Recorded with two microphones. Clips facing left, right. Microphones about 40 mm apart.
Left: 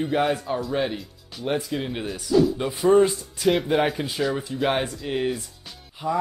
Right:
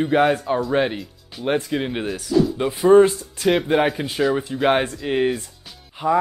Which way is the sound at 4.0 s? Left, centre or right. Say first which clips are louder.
Right 5 dB; centre.